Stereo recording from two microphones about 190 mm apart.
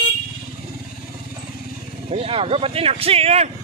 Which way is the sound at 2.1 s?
30° right (ahead or behind).